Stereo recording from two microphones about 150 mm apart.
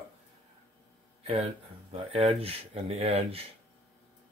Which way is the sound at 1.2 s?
45° right (ahead or behind).